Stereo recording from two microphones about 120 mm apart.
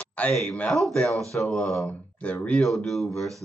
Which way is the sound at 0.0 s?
10° left (ahead or behind).